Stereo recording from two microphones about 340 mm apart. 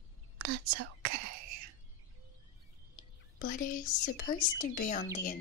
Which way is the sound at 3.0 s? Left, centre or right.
Left.